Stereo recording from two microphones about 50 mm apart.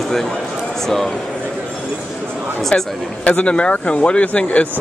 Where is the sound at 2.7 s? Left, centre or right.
Left.